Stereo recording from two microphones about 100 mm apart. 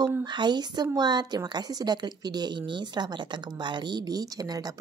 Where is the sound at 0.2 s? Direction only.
50° right (ahead or behind).